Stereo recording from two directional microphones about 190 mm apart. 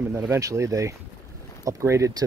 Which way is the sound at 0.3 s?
15° right (ahead or behind).